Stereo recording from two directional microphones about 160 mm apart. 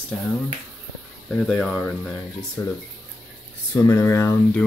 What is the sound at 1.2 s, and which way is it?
Speech, 5° left (ahead or behind).